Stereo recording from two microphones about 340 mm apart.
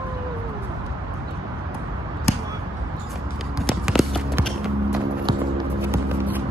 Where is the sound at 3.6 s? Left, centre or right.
Centre.